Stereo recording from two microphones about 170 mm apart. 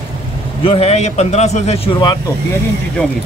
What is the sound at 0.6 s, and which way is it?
Speech, 35° left (ahead or behind).